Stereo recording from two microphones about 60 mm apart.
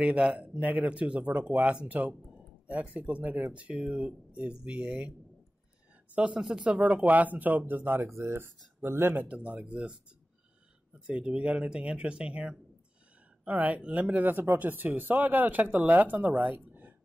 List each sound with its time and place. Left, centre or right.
0.0 s speech: centre
6.1 s speech: centre; by 9.2 s right
9.2 s speech: right
11.1 s speech: centre